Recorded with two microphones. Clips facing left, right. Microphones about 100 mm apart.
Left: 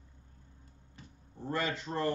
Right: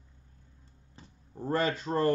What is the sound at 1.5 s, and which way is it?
Speech, 40° right (ahead or behind).